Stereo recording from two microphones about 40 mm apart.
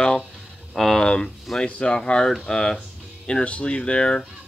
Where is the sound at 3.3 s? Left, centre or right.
Left.